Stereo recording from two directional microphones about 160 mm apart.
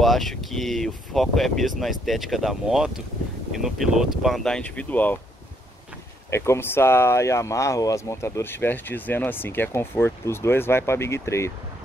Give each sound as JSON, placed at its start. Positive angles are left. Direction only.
{"t": 0.0, "sound": "speech", "side_deg": 0}
{"t": 6.3, "sound": "speech", "side_deg": 15}